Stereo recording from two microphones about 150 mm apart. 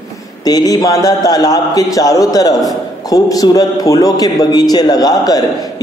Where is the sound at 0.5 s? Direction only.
25° left (ahead or behind).